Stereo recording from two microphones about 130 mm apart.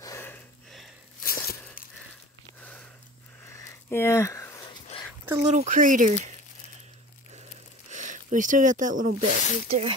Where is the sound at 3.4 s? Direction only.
20° left (ahead or behind).